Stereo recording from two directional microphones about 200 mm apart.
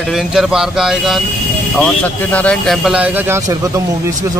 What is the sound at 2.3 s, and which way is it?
A man's voice, 5° left (ahead or behind).